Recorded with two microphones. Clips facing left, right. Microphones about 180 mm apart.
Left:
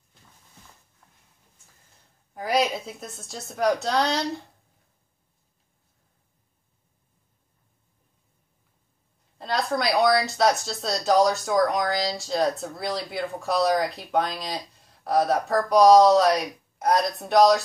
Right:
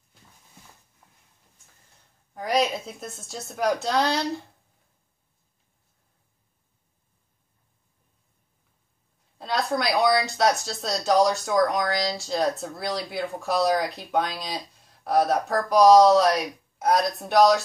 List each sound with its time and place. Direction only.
2.3 s speech: 5° left (ahead or behind)
9.4 s speech: centre (ahead or behind)